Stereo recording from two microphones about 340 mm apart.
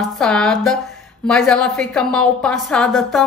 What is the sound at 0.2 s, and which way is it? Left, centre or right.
A woman's voice, centre.